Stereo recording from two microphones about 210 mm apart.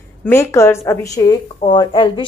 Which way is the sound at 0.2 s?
10° left (ahead or behind).